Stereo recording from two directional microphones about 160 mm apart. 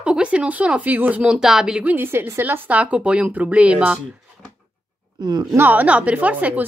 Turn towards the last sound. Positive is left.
turn(degrees=-10)  # may be behind; listen again after turning